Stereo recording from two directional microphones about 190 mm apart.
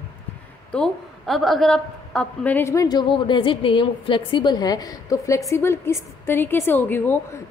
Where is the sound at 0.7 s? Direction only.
Centre (ahead or behind).